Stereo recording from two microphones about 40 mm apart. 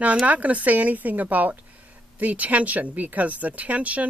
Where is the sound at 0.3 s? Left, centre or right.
Right.